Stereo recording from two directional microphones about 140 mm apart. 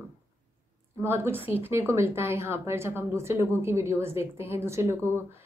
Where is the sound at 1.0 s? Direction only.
15° right (ahead or behind).